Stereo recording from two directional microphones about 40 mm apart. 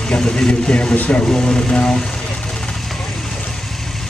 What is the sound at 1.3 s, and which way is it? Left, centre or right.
Speech, left.